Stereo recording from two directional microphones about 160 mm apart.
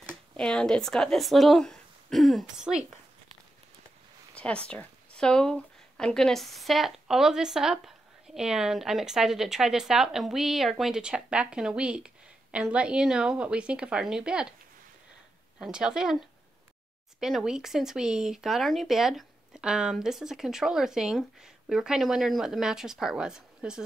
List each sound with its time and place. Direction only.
0.4 s speech: 5° left (ahead or behind)
4.4 s a woman's voice: 5° left (ahead or behind)
15.6 s speech: 5° right (ahead or behind)